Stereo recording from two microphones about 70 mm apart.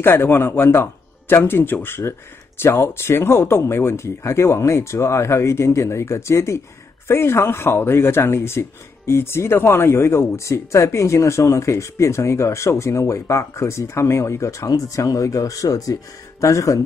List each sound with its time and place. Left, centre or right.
0.0 s speech: left